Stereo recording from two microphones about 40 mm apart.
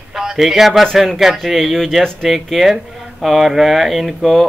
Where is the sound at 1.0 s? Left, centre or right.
Centre.